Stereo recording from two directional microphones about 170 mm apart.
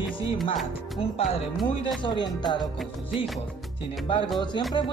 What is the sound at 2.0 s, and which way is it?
Speech, 25° left (ahead or behind).